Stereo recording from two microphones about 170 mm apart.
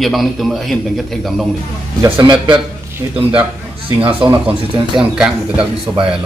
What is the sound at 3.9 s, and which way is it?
Speech, 30° right (ahead or behind).